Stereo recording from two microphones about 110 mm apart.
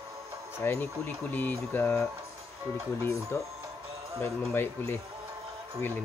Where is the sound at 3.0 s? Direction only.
25° left (ahead or behind).